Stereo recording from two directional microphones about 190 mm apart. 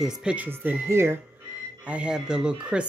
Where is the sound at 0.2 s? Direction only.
5° right (ahead or behind).